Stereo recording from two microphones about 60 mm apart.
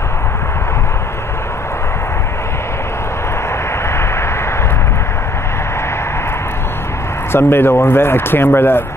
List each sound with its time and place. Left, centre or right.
7.3 s speech: left